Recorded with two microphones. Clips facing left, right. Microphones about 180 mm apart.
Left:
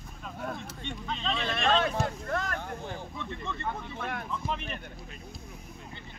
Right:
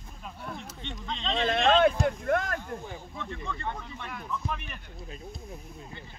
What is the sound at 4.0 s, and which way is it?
Speech, 65° left (ahead or behind).